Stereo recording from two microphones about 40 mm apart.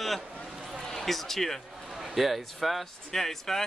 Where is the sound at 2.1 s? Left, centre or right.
Centre.